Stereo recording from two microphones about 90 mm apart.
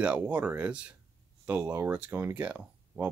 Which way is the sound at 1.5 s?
25° right (ahead or behind).